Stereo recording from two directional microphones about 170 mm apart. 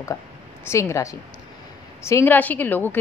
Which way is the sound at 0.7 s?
15° left (ahead or behind).